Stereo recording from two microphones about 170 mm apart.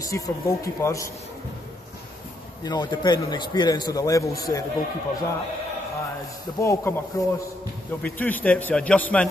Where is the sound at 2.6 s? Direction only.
20° left (ahead or behind).